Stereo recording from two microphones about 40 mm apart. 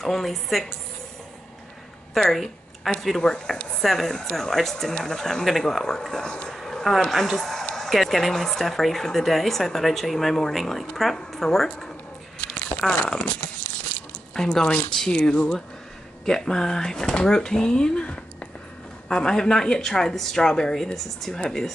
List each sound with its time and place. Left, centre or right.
0.0 s speech: centre
2.3 s a sound: centre
3.2 s speech: centre
6.5 s a sound: centre
7.1 s speech: centre
12.4 s tearing: left
13.0 s speech: left
18.0 s a sound: left
19.0 s speech: centre